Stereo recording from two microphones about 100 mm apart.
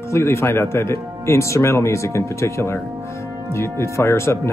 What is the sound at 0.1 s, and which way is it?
Speech, 25° left (ahead or behind).